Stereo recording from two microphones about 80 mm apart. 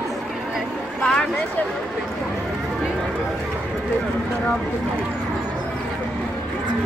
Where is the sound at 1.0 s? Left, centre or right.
Centre.